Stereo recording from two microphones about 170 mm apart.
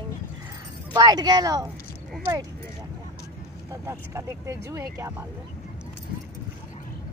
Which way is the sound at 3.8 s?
15° right (ahead or behind).